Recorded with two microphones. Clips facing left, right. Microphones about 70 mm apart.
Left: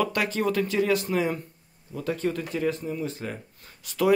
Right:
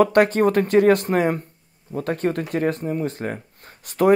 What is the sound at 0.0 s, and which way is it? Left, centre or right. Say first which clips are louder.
Speech: right 10 dB; right.